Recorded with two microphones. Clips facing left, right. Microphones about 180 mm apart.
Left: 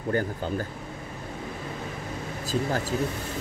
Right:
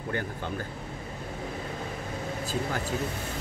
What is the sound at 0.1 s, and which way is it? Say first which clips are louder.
Speech: left 6 dB; 40° left (ahead or behind).